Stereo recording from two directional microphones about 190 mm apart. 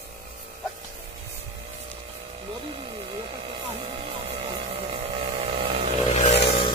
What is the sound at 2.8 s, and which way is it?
Music, 30° right (ahead or behind).